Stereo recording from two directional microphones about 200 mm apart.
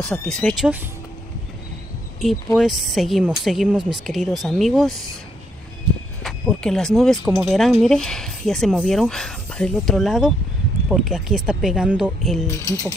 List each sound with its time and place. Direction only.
0.0 s speech: 5° left (ahead or behind)
2.2 s speech: centre (ahead or behind)
6.2 s speech: centre (ahead or behind)
12.4 s speech: 15° left (ahead or behind)